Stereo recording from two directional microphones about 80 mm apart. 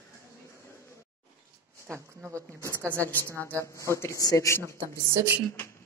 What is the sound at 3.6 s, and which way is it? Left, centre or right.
A woman's voice, left.